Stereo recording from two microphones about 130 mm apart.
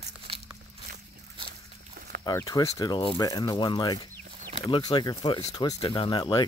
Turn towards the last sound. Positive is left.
turn(degrees=35)  # may be behind; listen again after turning